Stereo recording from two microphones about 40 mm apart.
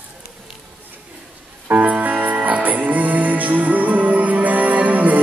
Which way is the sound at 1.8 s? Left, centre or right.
Right.